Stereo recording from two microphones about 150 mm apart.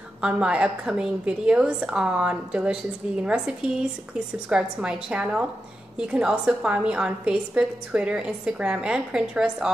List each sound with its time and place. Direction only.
0.2 s a woman's voice: 5° right (ahead or behind)